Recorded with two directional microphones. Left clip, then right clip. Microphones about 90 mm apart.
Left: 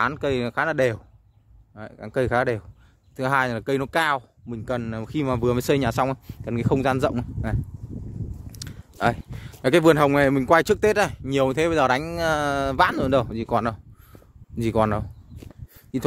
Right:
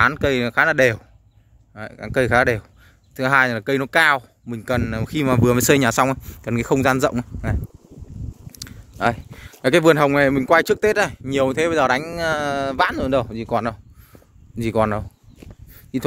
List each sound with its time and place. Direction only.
0.0 s speech: 15° left (ahead or behind)
3.2 s speech: 25° left (ahead or behind)
5.2 s speech: centre (ahead or behind)
5.9 s speech: 5° left (ahead or behind)
8.5 s a sound: 40° left (ahead or behind)
9.6 s speech: 25° left (ahead or behind)
12.1 s speech: 55° left (ahead or behind); by 14.2 s 75° left (ahead or behind)
14.6 s speech: 40° left (ahead or behind)